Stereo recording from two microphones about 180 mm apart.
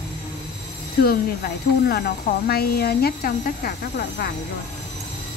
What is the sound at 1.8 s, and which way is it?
Speech, 60° left (ahead or behind).